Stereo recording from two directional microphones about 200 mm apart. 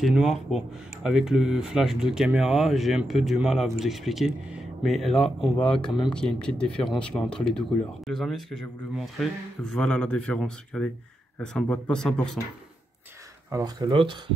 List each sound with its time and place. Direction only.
0.0 s speech: centre (ahead or behind)
13.5 s speech: 20° right (ahead or behind)